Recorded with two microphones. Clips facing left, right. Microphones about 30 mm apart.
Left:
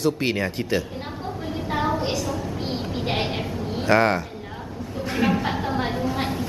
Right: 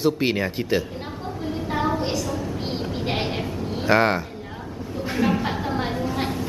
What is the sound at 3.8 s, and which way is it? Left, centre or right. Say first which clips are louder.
Speech: even; centre.